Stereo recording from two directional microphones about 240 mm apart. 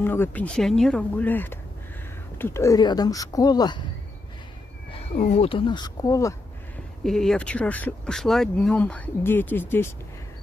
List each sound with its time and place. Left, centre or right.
0.0 s speech: centre
5.1 s speech: left
7.0 s speech: centre